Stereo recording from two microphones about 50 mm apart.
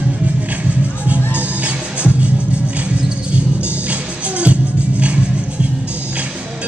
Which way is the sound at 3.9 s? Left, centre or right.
Right.